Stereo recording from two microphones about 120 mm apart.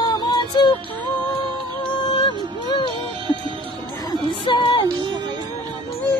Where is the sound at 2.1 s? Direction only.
45° left (ahead or behind).